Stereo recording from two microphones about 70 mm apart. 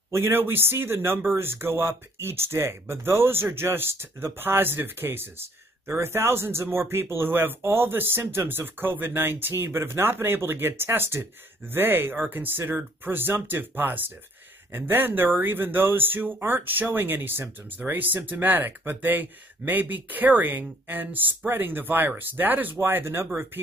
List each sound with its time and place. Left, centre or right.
0.1 s speech: right